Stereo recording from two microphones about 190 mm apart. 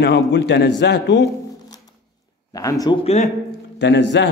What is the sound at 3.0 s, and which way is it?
Speech, 35° left (ahead or behind).